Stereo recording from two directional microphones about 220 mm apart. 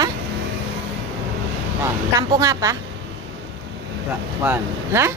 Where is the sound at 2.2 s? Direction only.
15° right (ahead or behind).